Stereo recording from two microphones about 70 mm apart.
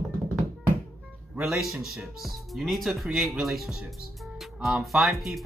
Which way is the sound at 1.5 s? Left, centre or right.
Centre.